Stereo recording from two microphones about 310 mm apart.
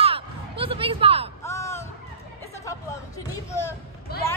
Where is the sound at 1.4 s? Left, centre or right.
Centre.